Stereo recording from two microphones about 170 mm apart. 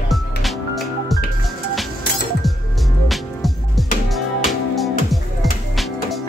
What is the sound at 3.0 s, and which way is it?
Music, centre (ahead or behind).